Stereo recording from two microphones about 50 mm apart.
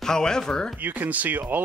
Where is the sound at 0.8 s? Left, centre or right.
Right.